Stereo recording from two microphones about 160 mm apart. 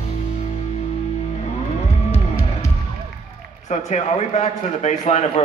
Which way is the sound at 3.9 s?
45° left (ahead or behind).